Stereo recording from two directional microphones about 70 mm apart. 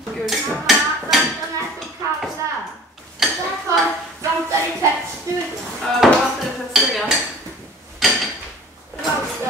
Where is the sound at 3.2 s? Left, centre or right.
Centre.